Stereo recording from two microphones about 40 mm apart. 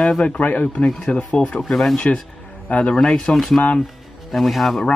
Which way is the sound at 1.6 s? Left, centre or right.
Centre.